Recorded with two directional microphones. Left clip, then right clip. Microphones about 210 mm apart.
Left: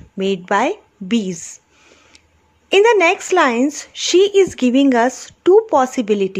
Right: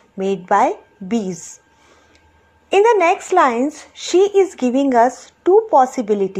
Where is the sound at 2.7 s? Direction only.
25° left (ahead or behind).